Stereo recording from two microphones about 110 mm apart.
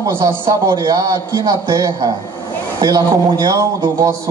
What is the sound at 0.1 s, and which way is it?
A man's voice, 20° right (ahead or behind).